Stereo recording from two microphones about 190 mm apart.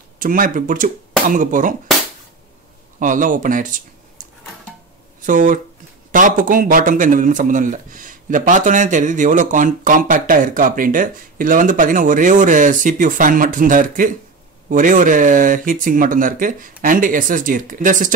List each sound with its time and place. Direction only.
0.2 s speech: 45° right (ahead or behind)
3.0 s speech: 45° right (ahead or behind)